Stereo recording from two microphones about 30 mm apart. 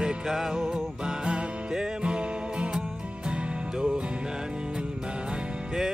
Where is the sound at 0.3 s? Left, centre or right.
Centre.